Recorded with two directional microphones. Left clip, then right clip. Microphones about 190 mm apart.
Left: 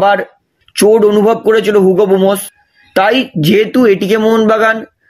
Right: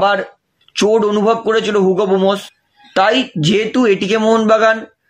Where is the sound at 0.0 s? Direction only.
45° left (ahead or behind).